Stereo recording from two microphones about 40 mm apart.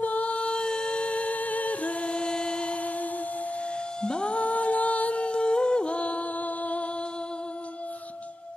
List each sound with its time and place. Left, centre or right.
0.0 s music: left
0.4 s music: centre
0.9 s a sound: left
4.0 s music: left